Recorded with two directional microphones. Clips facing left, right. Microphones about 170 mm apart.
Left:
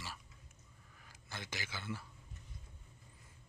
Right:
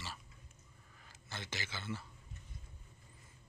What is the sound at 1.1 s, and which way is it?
Speech, 10° left (ahead or behind).